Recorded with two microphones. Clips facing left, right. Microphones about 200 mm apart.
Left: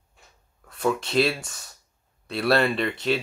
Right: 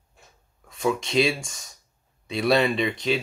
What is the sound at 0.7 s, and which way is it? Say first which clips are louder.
Speech: even; 5° left (ahead or behind).